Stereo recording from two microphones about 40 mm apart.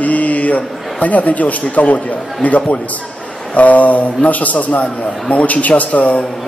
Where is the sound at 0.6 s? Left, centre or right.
Left.